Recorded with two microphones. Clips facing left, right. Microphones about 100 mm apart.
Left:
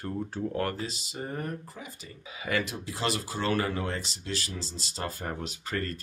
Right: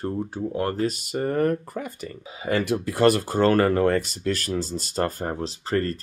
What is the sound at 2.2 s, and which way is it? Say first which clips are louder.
Speech: right 6 dB; 30° right (ahead or behind).